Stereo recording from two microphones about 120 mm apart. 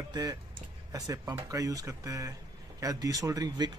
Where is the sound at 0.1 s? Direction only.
30° right (ahead or behind).